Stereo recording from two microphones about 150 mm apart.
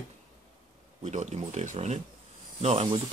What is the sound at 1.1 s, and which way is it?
Speech, 55° right (ahead or behind).